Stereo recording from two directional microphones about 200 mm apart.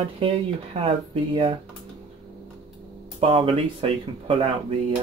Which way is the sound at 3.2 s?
30° right (ahead or behind).